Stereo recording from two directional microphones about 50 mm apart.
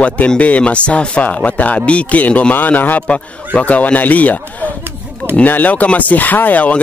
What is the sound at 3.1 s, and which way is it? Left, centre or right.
Speech, left.